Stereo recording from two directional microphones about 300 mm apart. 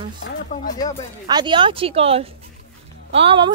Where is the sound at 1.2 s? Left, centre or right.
Centre.